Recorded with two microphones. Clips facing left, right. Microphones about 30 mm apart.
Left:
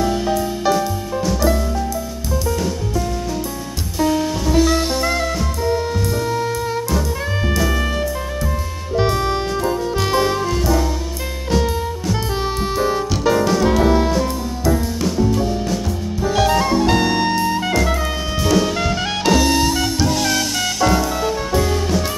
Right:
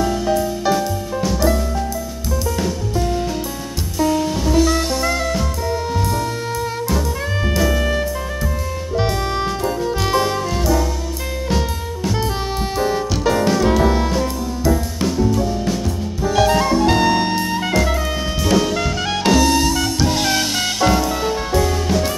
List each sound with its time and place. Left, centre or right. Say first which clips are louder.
4.0 s music: even; centre
16.3 s jazz: right 1 dB; centre
18.5 s music: even; centre
20.1 s music: even; right
20.9 s music: even; centre